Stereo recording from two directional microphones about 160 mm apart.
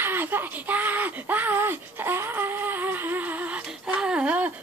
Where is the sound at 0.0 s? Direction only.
15° right (ahead or behind).